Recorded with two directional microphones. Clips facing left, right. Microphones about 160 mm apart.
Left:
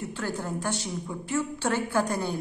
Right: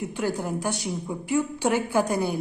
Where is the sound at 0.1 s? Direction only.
15° right (ahead or behind).